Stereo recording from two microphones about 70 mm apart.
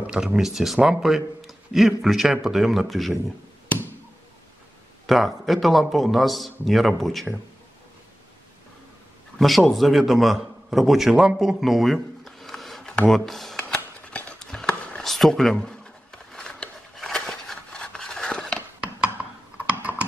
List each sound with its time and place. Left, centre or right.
0.0 s speech: centre
5.0 s speech: centre
9.4 s a man's voice: centre
14.0 s a sound: centre
15.5 s a sound: centre
18.8 s computer keyboard: centre